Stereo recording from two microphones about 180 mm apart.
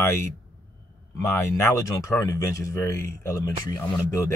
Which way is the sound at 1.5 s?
20° left (ahead or behind).